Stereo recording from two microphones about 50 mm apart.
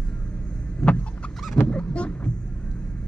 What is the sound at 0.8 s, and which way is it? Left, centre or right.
Vehicle, centre.